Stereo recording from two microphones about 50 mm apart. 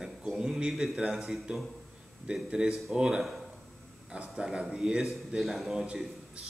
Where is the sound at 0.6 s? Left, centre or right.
Centre.